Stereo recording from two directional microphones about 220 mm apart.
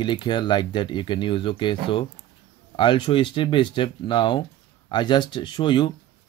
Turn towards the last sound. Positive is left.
turn(degrees=20)  # may be behind; listen again after turning